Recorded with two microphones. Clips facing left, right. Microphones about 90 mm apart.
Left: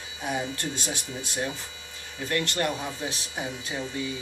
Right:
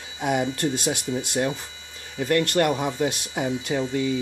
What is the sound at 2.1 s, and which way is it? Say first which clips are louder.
Speech: right 7 dB; 50° right (ahead or behind).